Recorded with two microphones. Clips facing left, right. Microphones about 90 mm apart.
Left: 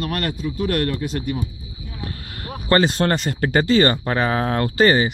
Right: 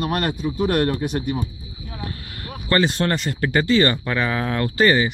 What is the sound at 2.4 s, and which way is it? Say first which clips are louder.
Speech: left 2 dB; 35° left (ahead or behind).